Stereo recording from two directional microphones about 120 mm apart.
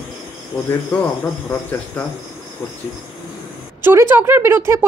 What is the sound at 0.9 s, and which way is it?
Cricket, 15° left (ahead or behind).